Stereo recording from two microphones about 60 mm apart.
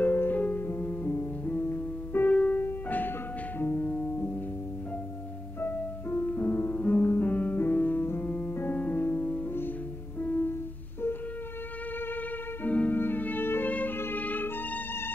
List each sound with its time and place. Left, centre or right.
0.0 s music: left
2.6 s music: left
5.6 s music: left
12.6 s music: left
14.2 s music: left